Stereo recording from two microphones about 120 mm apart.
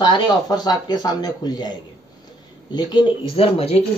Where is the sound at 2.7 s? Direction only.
40° left (ahead or behind); by 3.8 s 55° left (ahead or behind).